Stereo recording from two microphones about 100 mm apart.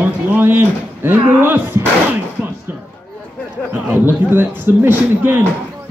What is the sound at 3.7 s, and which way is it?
Speech, 20° right (ahead or behind).